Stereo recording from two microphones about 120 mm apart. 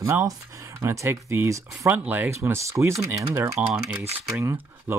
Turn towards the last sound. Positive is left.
turn(degrees=-20)  # may be behind; listen again after turning